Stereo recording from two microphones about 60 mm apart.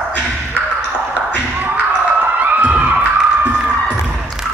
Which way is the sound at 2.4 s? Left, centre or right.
Right.